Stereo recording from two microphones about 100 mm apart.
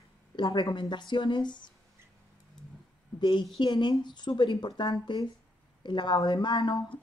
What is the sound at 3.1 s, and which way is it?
A woman's voice, 50° left (ahead or behind).